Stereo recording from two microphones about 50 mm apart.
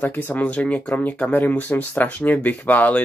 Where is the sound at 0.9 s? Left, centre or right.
Left.